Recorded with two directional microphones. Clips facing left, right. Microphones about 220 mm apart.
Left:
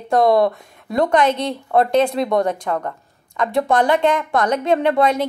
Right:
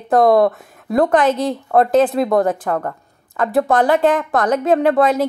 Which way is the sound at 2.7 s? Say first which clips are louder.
Right 2 dB; 45° right (ahead or behind).